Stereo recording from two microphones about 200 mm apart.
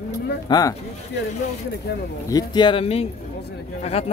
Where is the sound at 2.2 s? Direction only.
20° left (ahead or behind).